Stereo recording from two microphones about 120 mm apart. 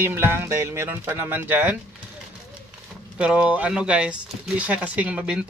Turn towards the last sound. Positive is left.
turn(degrees=-5)  # may be behind; listen again after turning